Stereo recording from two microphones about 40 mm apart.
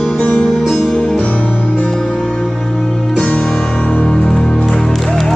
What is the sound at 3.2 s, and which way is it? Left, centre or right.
Music, left.